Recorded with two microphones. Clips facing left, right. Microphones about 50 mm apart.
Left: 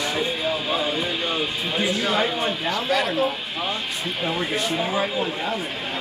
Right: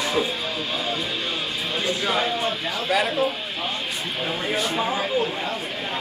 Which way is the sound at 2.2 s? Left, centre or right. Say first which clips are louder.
Left 1 dB; centre.